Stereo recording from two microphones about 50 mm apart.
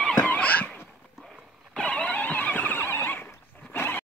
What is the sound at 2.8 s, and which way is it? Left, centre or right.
Neigh, left.